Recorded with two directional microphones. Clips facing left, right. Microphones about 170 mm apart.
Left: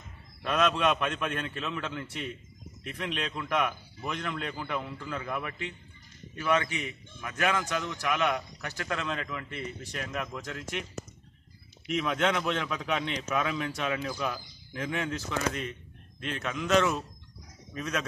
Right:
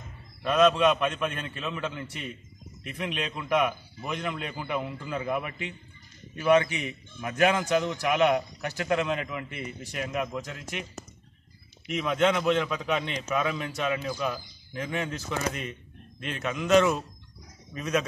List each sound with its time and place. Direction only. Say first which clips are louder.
0.4 s a man's voice: right 5 dB; centre (ahead or behind)
11.9 s a man's voice: right 3 dB; 5° right (ahead or behind)